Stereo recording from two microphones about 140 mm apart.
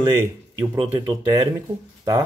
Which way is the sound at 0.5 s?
20° right (ahead or behind).